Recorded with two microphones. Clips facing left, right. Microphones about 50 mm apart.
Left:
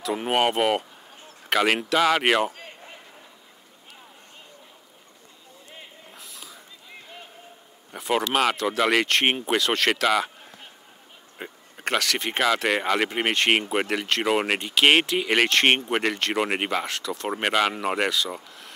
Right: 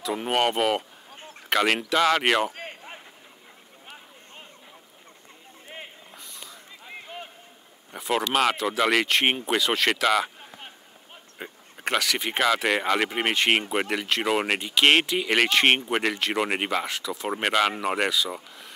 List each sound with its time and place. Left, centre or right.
0.0 s speech: centre
2.5 s a sound: right
6.1 s snort: centre
6.9 s run: right
7.9 s speech: centre